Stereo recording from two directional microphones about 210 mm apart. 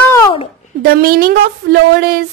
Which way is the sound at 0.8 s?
45° right (ahead or behind).